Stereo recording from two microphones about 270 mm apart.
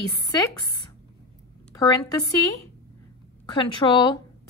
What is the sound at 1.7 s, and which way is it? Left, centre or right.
Speech, centre.